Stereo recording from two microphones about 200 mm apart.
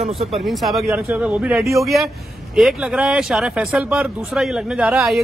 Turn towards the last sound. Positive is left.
turn(degrees=0)  # may be behind; listen again after turning